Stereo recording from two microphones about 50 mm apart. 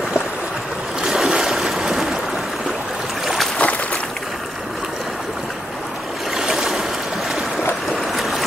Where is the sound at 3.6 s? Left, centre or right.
Left.